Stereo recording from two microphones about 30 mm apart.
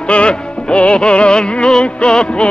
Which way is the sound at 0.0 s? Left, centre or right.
Left.